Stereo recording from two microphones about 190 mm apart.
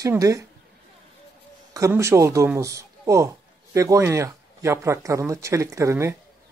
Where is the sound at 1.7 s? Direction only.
15° right (ahead or behind).